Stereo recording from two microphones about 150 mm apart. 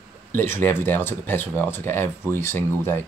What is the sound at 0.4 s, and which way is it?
Speech, 15° left (ahead or behind).